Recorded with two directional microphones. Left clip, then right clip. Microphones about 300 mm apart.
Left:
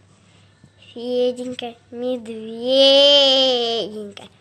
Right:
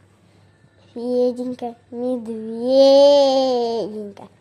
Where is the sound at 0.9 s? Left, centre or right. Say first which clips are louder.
Right 1 dB; centre.